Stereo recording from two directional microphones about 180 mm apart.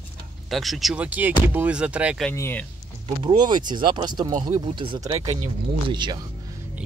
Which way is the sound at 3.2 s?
25° right (ahead or behind).